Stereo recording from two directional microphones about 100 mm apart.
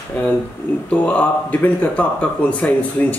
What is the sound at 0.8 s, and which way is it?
Speech, 10° left (ahead or behind).